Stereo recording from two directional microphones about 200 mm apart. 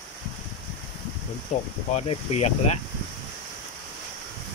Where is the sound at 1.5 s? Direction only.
35° left (ahead or behind).